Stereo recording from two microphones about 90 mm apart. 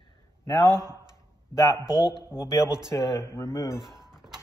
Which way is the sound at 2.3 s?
10° right (ahead or behind).